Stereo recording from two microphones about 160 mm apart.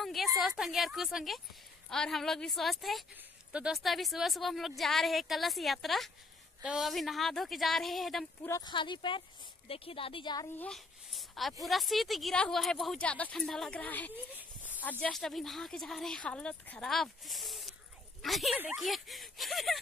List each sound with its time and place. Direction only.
0.0 s a sound: centre (ahead or behind)
0.4 s speech: centre (ahead or behind)
8.5 s speech: 20° left (ahead or behind)
8.7 s a woman's voice: 30° left (ahead or behind)
10.5 s a child's voice: 10° left (ahead or behind)
14.3 s a sound: 10° right (ahead or behind)
14.7 s speech: 10° left (ahead or behind)